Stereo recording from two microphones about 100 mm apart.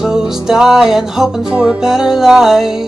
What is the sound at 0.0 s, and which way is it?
Music, 5° right (ahead or behind).